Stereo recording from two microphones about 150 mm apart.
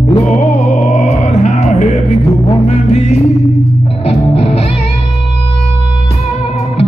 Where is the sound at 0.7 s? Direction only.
45° left (ahead or behind).